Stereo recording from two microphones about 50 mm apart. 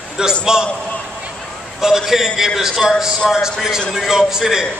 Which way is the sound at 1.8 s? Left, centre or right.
Centre.